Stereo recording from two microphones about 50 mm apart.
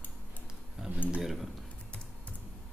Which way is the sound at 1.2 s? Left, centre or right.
Centre.